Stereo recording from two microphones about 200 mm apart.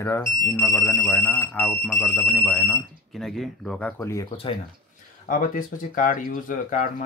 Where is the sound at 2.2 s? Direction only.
Centre (ahead or behind).